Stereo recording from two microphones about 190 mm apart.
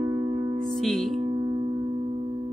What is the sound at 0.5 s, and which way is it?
Music, centre (ahead or behind).